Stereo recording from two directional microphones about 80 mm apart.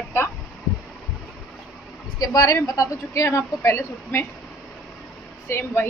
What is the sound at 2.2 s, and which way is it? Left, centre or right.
A woman's voice, left.